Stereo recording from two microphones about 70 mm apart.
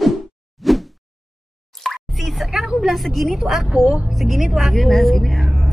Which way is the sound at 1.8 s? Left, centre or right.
Centre.